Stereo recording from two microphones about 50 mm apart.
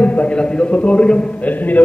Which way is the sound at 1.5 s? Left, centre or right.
Left.